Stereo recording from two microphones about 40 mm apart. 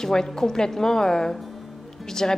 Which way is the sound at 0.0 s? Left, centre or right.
Centre.